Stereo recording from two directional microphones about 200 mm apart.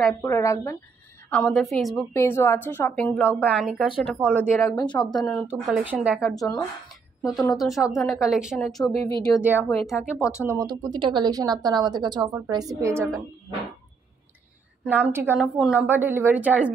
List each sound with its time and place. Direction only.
0.0 s a woman's voice: 15° left (ahead or behind)
1.3 s a woman's voice: 5° left (ahead or behind)
2.1 s a woman's voice: 10° left (ahead or behind)
4.9 s a woman's voice: 5° left (ahead or behind)
9.4 s a woman's voice: 10° right (ahead or behind)
10.3 s speech: 10° right (ahead or behind)
14.9 s a woman's voice: 10° right (ahead or behind)